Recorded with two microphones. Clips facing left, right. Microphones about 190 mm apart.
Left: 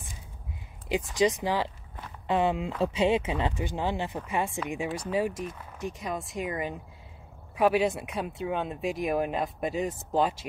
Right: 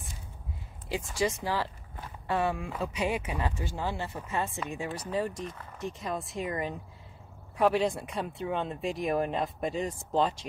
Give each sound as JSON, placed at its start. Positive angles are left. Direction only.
{"t": 0.8, "sound": "speech", "side_deg": 20}